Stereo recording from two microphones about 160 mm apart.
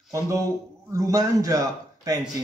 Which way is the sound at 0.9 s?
20° right (ahead or behind).